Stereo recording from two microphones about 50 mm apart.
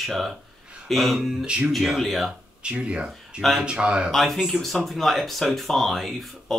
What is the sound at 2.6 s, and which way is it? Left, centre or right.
Speech, right.